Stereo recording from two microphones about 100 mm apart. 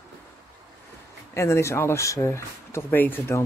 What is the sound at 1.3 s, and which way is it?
Speech, 30° left (ahead or behind).